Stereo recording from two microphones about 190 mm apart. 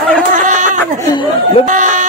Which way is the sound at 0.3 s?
40° right (ahead or behind).